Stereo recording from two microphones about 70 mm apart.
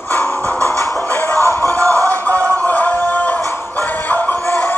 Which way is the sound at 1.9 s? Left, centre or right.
Left.